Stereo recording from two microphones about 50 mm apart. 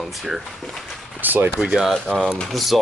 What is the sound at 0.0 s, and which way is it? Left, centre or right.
Speech, centre.